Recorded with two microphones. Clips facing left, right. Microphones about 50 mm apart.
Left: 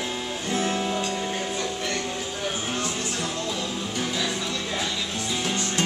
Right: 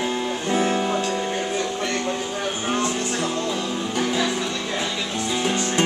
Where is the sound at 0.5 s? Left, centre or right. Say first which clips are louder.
Right 4 dB; centre.